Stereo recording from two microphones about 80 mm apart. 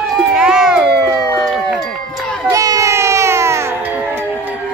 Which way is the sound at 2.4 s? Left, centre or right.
Right.